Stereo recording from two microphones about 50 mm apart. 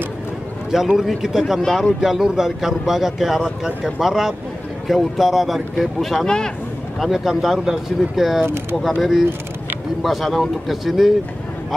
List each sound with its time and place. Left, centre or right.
0.7 s speech: centre
6.2 s speech: centre
7.0 s speech: centre
10.0 s speech: centre